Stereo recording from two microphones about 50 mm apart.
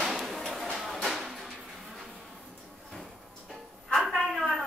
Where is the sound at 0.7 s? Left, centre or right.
Centre.